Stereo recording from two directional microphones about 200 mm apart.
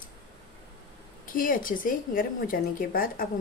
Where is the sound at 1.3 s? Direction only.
45° left (ahead or behind).